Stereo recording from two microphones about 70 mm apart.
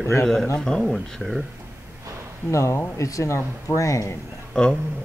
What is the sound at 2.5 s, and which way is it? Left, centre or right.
Speech, left.